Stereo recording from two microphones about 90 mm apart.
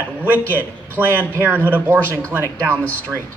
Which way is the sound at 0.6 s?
20° right (ahead or behind).